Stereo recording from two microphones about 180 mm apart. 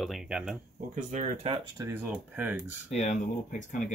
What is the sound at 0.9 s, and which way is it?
Speech, 40° right (ahead or behind).